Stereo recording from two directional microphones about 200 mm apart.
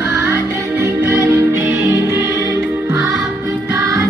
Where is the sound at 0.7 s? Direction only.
15° right (ahead or behind).